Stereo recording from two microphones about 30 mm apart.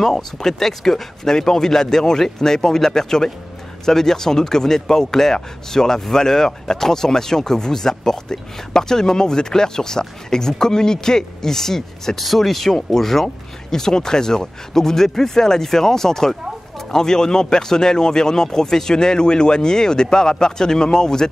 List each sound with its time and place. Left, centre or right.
0.0 s speech: centre